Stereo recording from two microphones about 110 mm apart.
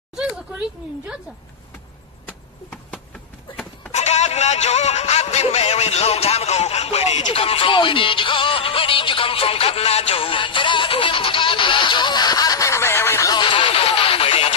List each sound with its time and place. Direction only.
0.1 s speech: 10° right (ahead or behind)
2.2 s a sound: 15° left (ahead or behind)
3.9 s speech: 90° left; by 13.3 s 25° left (ahead or behind)
13.3 s music: 45° left (ahead or behind)